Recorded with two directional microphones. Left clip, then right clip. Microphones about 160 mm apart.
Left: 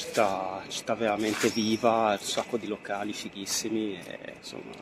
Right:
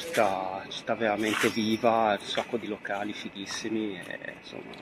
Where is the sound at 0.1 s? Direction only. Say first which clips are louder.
Even; 15° left (ahead or behind).